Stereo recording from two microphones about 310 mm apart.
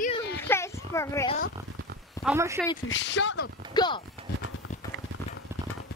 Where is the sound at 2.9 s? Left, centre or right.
Left.